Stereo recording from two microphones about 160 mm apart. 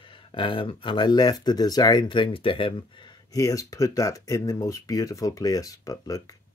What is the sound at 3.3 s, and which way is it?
Speech, 20° left (ahead or behind).